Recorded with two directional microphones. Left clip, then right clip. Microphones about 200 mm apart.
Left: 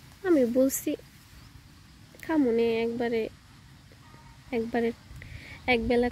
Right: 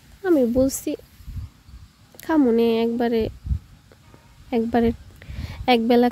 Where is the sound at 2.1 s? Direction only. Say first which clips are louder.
Right 6 dB; 20° right (ahead or behind).